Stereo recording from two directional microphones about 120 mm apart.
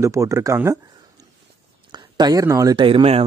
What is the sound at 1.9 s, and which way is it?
Speech, 35° right (ahead or behind).